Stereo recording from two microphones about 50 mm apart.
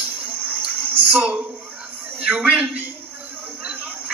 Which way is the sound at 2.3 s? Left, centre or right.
Centre.